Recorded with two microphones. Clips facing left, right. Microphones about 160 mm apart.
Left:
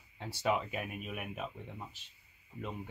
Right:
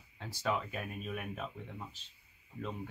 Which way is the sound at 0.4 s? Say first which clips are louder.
Left 2 dB; 20° left (ahead or behind).